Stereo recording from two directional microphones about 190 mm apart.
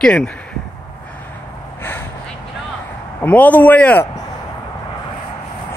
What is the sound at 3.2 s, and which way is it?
Speech, 10° left (ahead or behind).